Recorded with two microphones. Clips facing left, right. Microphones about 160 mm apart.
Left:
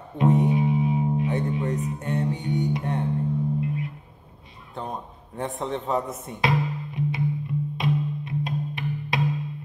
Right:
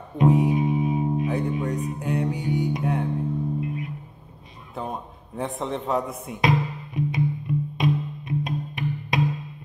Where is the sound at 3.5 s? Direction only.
25° right (ahead or behind).